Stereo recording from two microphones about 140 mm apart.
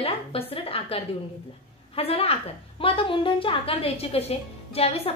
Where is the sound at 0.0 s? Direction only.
40° left (ahead or behind).